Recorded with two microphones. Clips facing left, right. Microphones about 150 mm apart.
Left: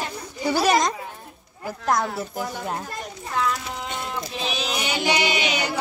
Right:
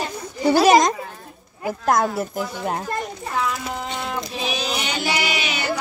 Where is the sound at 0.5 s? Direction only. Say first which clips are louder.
Right 6 dB; 90° right.